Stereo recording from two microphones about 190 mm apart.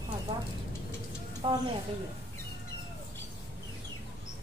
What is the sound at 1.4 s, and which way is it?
Speech, 30° right (ahead or behind).